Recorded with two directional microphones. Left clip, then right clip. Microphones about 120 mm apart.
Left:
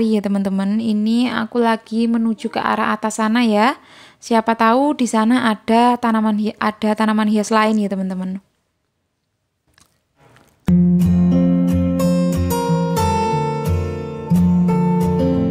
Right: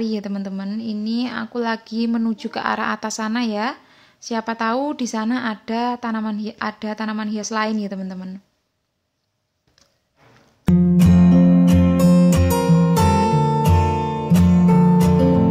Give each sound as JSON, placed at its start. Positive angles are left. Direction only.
{"t": 0.0, "sound": "a woman's voice", "side_deg": 40}
{"t": 10.6, "sound": "music", "side_deg": 0}